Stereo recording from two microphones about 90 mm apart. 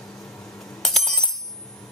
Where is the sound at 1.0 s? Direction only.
5° left (ahead or behind).